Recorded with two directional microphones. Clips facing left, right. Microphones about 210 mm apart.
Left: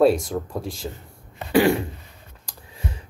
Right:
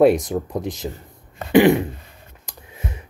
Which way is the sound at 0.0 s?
20° right (ahead or behind).